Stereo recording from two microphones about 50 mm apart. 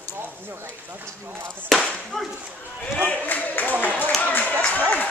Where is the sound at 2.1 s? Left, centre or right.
Centre.